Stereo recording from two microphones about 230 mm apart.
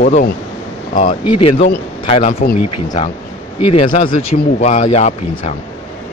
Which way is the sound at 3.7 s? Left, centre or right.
Left.